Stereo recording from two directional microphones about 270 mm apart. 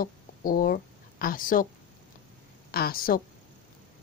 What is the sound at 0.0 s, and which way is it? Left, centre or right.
Speech, left.